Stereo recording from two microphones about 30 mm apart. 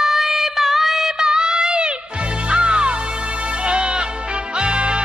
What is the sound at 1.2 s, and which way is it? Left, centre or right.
Music, right.